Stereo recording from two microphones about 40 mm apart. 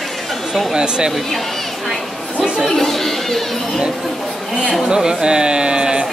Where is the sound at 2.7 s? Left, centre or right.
Centre.